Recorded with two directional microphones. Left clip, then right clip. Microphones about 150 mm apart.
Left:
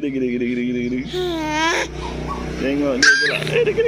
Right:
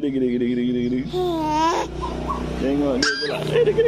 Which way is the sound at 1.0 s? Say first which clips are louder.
Even; 20° right (ahead or behind).